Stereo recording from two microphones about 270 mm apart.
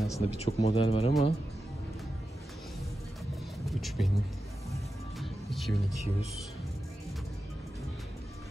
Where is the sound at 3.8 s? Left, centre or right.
Centre.